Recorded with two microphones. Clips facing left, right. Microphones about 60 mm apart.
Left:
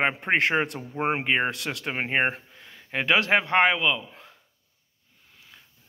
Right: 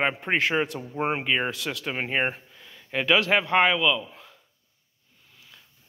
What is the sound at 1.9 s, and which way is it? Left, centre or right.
Speech, left.